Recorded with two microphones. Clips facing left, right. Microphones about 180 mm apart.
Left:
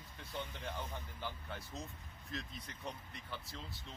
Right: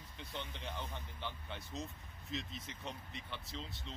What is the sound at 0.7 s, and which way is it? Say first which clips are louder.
Speech: left 1 dB; 15° left (ahead or behind).